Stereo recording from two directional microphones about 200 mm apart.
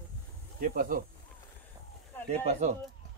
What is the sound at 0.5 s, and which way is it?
Speech, 45° right (ahead or behind).